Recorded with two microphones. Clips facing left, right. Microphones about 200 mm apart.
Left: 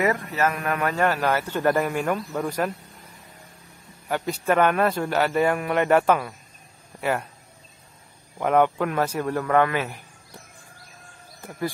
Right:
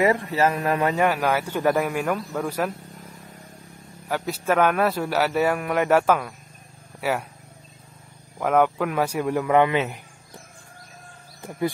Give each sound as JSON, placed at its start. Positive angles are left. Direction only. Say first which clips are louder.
{"t": 0.0, "sound": "speech", "louder": "right 3 dB", "side_deg": -30}
{"t": 1.0, "sound": "a man's voice", "louder": "right 1 dB", "side_deg": -10}
{"t": 4.1, "sound": "a man's voice", "louder": "even", "side_deg": 0}
{"t": 8.4, "sound": "a man's voice", "louder": "even", "side_deg": 0}